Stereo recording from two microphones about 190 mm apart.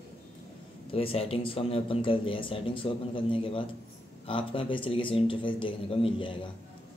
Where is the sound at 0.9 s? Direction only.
30° left (ahead or behind).